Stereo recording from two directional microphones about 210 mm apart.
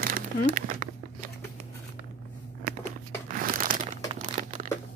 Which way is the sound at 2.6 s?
40° right (ahead or behind).